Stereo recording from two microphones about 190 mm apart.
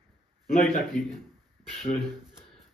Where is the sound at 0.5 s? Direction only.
5° left (ahead or behind).